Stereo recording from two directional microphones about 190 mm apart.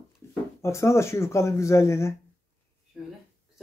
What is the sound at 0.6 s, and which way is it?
Speech, 15° left (ahead or behind).